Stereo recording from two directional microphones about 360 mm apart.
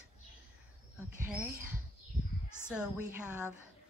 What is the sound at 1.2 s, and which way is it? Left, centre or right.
Speech, centre.